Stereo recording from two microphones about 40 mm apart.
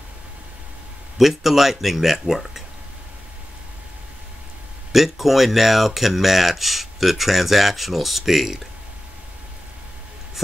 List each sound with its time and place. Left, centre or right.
1.1 s speech: centre
4.9 s speech: centre